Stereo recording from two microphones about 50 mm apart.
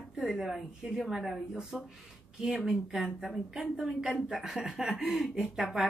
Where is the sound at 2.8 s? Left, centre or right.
Centre.